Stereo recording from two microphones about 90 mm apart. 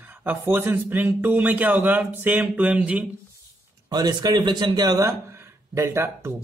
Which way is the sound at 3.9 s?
50° right (ahead or behind).